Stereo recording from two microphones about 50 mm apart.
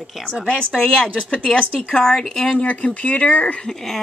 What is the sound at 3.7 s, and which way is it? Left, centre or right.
Speech, centre.